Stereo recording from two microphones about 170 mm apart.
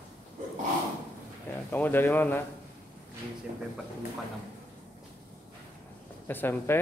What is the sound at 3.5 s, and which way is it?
Speech, 50° right (ahead or behind).